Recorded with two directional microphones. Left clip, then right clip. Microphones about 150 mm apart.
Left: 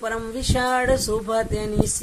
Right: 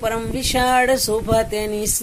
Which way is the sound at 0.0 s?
15° right (ahead or behind).